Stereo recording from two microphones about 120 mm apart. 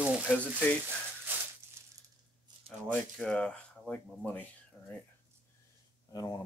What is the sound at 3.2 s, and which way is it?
Speech, 5° left (ahead or behind).